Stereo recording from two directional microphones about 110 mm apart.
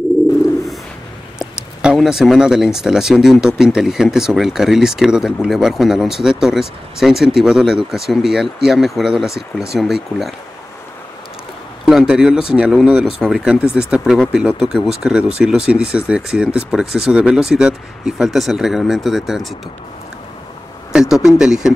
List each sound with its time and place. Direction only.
1.4 s speech: 5° right (ahead or behind)
11.8 s speech: 5° right (ahead or behind)
20.9 s speech: 5° right (ahead or behind)